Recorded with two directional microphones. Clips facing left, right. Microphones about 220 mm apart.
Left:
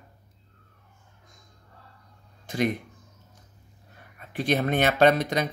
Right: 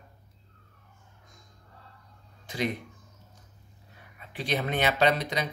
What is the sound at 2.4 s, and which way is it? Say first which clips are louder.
Speech: left 5 dB; 50° left (ahead or behind).